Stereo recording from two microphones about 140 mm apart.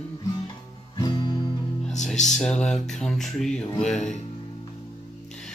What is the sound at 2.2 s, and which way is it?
Speech, 5° left (ahead or behind).